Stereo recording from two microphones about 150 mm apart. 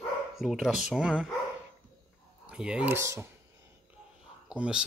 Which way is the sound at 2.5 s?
5° right (ahead or behind).